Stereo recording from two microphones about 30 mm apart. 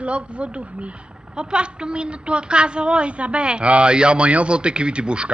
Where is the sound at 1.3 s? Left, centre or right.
Right.